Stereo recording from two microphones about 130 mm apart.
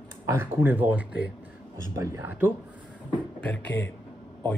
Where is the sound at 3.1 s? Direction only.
10° left (ahead or behind).